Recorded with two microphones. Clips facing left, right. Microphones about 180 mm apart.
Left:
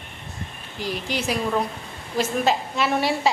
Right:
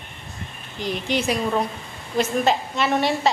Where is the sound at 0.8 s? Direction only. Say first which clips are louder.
Right 3 dB; 5° left (ahead or behind).